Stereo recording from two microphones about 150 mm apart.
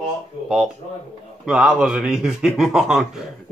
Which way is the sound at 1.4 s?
5° right (ahead or behind).